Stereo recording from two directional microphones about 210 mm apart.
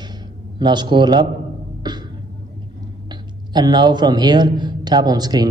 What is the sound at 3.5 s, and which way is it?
A man's voice, 20° right (ahead or behind).